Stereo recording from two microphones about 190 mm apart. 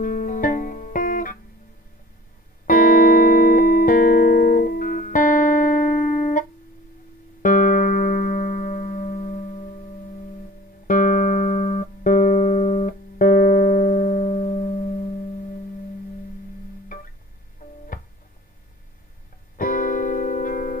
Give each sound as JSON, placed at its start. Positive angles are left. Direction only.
{"t": 0.0, "sound": "music", "side_deg": 45}
{"t": 2.6, "sound": "music", "side_deg": 45}
{"t": 7.4, "sound": "music", "side_deg": 45}
{"t": 10.9, "sound": "music", "side_deg": 45}
{"t": 17.6, "sound": "music", "side_deg": 45}
{"t": 19.5, "sound": "music", "side_deg": 45}